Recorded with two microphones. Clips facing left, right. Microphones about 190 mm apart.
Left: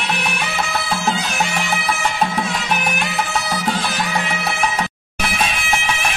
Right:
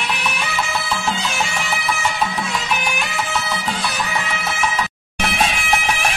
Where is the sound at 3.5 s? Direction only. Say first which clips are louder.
Left 3 dB; 50° left (ahead or behind).